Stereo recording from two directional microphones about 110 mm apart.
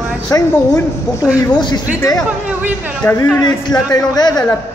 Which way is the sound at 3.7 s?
40° left (ahead or behind).